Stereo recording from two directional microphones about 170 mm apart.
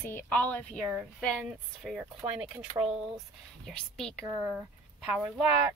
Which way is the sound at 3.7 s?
5° left (ahead or behind).